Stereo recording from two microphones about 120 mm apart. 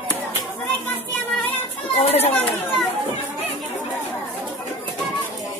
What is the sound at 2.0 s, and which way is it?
Speech, 60° left (ahead or behind).